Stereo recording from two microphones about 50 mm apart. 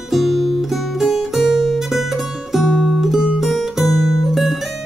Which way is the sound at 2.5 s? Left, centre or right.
Centre.